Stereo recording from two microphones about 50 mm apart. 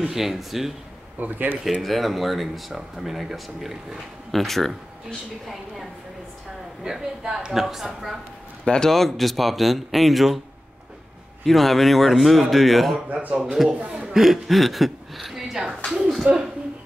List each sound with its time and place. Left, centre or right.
0.1 s speech: centre
1.2 s speech: right
1.6 s speech: centre
6.8 s a woman's voice: centre
8.6 s a man's voice: centre
8.9 s speech: centre
11.4 s speech: centre
13.1 s a man's voice: right
13.4 s speech: centre
13.7 s a man's voice: centre
14.1 s speech: centre
16.3 s a man's voice: right